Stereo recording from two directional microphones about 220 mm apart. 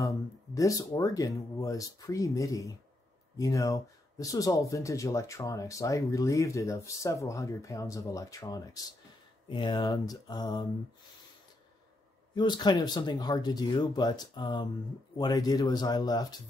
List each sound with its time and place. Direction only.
0.6 s speech: 15° left (ahead or behind)
12.4 s speech: 20° left (ahead or behind)